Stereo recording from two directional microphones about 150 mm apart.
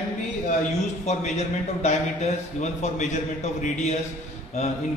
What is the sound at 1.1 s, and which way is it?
A man's voice, 50° left (ahead or behind).